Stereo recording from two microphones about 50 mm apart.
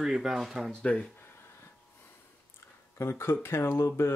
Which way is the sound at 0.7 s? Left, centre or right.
Centre.